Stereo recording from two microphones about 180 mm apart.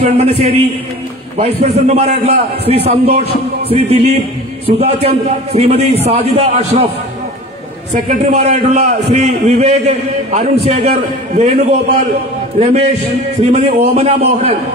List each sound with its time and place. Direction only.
0.0 s a man's voice: 35° right (ahead or behind)
8.1 s a man's voice: 40° right (ahead or behind)
12.5 s a man's voice: 35° right (ahead or behind)